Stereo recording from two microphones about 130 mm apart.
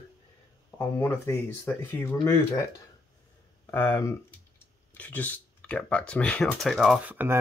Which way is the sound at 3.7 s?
15° left (ahead or behind).